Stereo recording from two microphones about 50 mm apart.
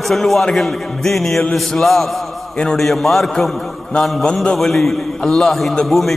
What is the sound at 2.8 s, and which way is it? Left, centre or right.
A man's voice, centre.